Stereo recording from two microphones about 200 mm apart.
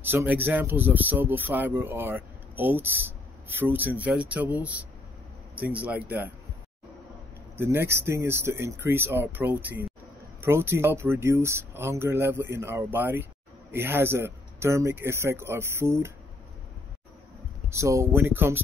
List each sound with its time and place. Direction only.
0.0 s speech: 10° right (ahead or behind)
7.5 s speech: 10° right (ahead or behind)
17.6 s speech: 15° right (ahead or behind)